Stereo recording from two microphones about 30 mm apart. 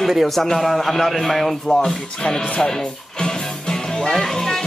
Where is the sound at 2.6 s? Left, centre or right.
Centre.